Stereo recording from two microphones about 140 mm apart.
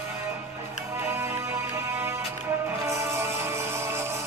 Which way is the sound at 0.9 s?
15° right (ahead or behind).